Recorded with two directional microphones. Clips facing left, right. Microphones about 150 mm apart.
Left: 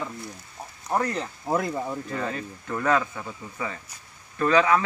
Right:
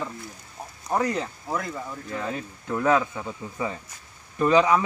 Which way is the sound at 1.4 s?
40° left (ahead or behind).